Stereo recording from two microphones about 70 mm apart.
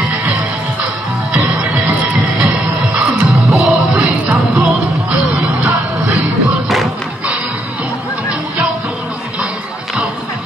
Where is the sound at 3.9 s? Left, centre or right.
Centre.